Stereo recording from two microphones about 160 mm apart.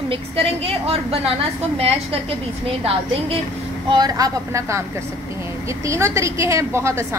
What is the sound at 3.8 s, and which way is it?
Speech, 25° right (ahead or behind).